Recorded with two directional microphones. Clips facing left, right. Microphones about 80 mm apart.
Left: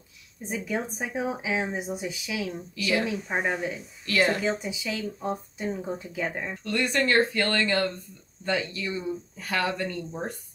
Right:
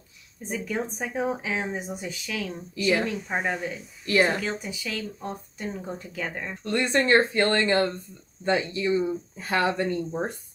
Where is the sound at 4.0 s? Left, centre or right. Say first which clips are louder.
Right 2 dB; right.